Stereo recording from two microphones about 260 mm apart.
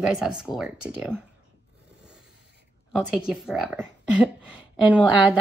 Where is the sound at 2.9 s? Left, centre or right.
Centre.